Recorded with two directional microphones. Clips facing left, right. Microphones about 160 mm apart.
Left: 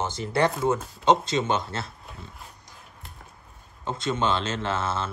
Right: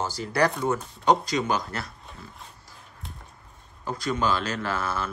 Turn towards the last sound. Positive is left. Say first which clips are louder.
# left 1 dB
turn(degrees=25)  # may be behind; listen again after turning